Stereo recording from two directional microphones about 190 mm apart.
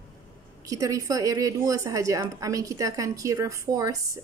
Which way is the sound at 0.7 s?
20° right (ahead or behind).